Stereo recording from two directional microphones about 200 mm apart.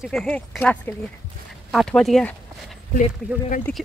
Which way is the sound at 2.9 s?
40° left (ahead or behind).